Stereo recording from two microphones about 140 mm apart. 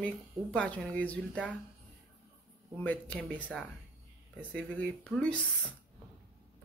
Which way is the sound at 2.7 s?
10° left (ahead or behind).